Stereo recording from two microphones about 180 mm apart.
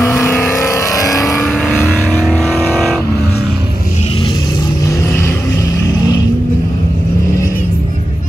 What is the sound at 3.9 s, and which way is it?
Vehicle, 30° left (ahead or behind).